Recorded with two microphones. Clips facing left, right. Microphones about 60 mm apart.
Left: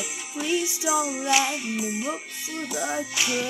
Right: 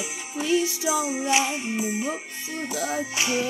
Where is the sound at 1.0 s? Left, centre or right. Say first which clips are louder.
Right 1 dB; right.